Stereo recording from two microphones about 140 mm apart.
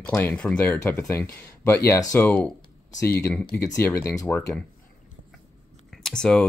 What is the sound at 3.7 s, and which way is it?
Speech, 20° left (ahead or behind).